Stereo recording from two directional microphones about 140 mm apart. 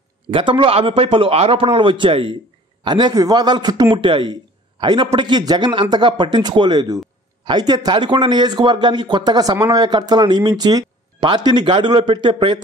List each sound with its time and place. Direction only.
0.3 s speech: 35° right (ahead or behind)